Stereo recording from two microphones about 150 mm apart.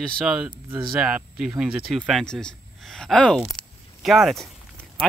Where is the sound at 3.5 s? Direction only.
Centre (ahead or behind).